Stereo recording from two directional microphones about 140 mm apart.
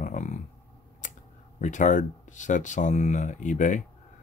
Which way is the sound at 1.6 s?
60° left (ahead or behind).